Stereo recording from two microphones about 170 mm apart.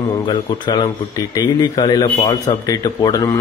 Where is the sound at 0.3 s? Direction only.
25° left (ahead or behind).